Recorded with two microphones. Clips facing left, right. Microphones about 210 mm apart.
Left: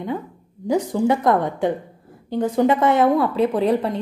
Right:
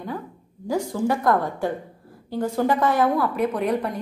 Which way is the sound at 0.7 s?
20° left (ahead or behind).